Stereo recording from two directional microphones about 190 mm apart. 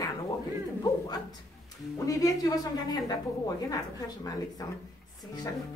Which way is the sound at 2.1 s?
20° left (ahead or behind).